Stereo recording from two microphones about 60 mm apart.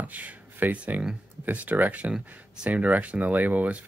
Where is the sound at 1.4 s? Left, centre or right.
Right.